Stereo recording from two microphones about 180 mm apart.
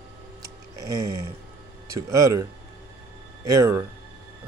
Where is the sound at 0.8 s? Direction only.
20° right (ahead or behind).